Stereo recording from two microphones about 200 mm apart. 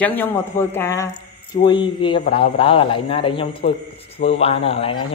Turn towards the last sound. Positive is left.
turn(degrees=30)  # may be behind; listen again after turning